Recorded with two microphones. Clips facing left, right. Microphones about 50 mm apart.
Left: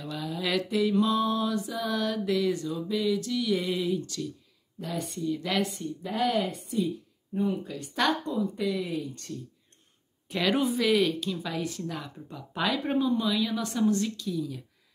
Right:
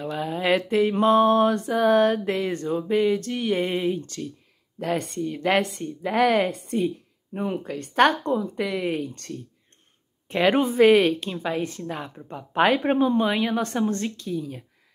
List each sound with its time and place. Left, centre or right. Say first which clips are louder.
0.0 s mantra: right 7 dB; right
4.7 s a woman's voice: right 8 dB; right
10.2 s a woman's voice: right 6 dB; right